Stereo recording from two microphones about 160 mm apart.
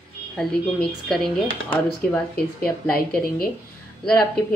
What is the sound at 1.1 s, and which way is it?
Speech, 5° left (ahead or behind).